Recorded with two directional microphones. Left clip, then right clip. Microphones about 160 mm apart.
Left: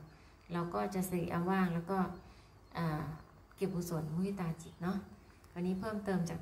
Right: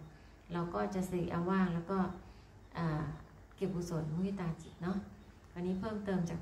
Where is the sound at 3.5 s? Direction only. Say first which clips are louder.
Even; 25° left (ahead or behind).